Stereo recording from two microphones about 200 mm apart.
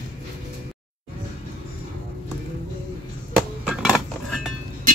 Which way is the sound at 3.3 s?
Centre (ahead or behind).